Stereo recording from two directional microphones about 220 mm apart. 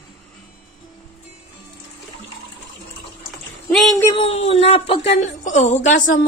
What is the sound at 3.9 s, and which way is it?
Speech, 25° left (ahead or behind).